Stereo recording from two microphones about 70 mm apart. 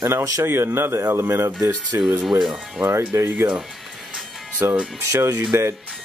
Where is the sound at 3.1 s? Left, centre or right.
Right.